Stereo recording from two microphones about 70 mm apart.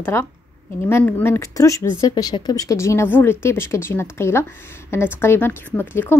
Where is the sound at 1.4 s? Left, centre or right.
Left.